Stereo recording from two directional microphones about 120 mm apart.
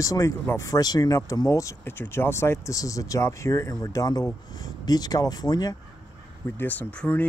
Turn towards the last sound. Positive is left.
turn(degrees=10)  # may be behind; listen again after turning